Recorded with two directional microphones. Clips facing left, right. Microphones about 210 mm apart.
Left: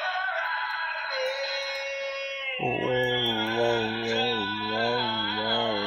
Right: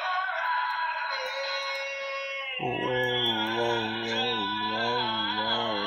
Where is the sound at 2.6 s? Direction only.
25° left (ahead or behind).